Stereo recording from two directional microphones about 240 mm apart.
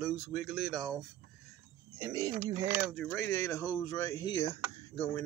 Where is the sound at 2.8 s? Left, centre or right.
Centre.